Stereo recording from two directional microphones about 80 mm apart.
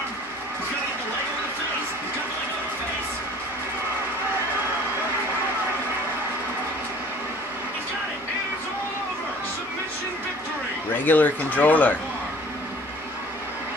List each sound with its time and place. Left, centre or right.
11.1 s speech: left